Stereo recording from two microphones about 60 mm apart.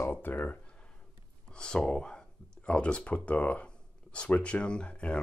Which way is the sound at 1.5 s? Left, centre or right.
Centre.